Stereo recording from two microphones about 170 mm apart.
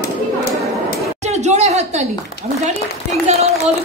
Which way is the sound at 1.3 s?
40° right (ahead or behind).